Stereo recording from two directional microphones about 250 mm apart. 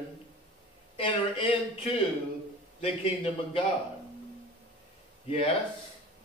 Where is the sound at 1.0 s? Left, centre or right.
Centre.